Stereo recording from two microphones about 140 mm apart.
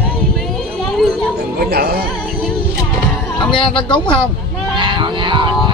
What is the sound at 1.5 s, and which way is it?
Music, 90° right.